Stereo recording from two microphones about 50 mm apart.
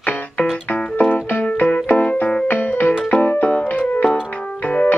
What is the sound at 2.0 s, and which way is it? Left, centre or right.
Keyboard, left.